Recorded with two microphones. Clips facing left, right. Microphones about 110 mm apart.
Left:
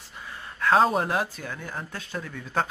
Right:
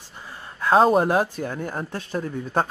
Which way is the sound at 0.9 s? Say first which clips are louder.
Right 6 dB; 40° right (ahead or behind).